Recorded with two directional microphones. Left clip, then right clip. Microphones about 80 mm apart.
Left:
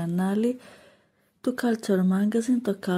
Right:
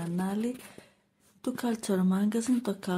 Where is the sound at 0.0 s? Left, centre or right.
Left.